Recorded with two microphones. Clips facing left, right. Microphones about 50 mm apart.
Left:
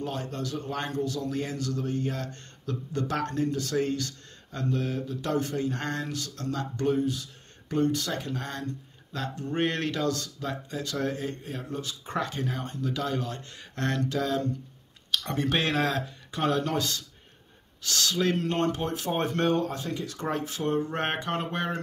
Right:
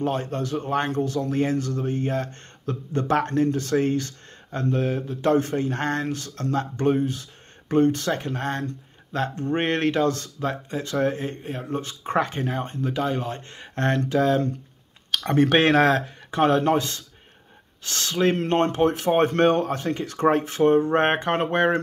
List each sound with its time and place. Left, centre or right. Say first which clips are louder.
0.0 s speech: right 7 dB; right